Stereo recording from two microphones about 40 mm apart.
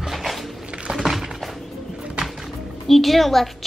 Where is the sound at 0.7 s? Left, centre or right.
Right.